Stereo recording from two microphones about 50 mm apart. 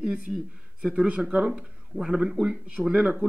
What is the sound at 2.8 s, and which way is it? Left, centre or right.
Speech, centre.